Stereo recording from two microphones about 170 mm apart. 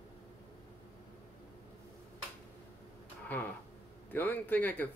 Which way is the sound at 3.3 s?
10° left (ahead or behind).